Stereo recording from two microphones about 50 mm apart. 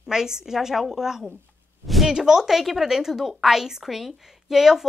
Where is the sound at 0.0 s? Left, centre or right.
Centre.